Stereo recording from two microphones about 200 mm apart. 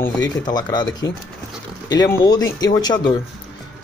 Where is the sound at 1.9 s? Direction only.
20° left (ahead or behind).